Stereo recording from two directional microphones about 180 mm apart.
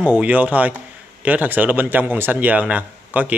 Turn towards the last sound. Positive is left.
turn(degrees=-10)  # may be behind; listen again after turning